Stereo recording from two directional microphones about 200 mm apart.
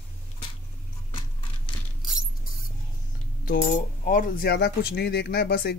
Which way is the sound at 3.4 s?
45° left (ahead or behind).